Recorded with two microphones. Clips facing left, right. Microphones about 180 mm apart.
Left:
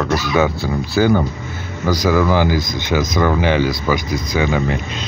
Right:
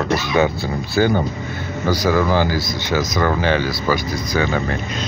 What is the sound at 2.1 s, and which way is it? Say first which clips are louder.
Speech: left 2 dB; 20° right (ahead or behind).